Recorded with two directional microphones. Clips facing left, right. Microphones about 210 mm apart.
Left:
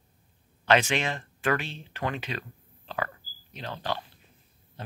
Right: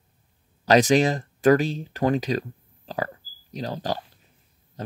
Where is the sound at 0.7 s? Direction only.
35° right (ahead or behind).